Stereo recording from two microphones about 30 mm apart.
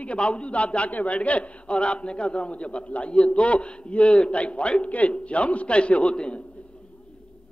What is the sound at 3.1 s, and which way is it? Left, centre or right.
Speech, left.